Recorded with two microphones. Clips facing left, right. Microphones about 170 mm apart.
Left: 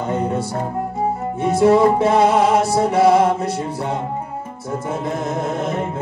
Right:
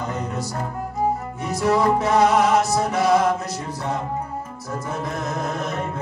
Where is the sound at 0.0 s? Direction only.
30° left (ahead or behind).